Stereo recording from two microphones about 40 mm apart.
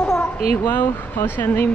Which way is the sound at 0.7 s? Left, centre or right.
Left.